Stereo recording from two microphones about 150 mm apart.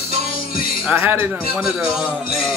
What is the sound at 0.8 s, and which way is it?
Speech, 15° right (ahead or behind).